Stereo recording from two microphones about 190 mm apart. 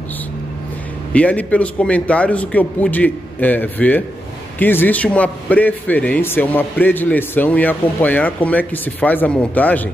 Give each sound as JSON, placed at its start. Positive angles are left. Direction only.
{"t": 1.1, "sound": "a man's voice", "side_deg": 5}